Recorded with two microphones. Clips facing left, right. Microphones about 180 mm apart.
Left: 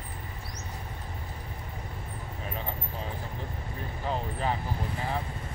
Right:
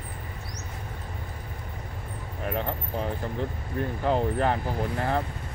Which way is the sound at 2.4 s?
65° right (ahead or behind).